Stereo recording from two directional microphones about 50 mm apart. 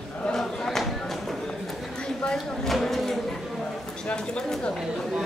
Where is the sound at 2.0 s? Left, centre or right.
Centre.